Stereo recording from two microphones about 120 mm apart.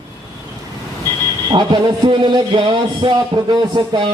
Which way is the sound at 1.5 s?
40° right (ahead or behind).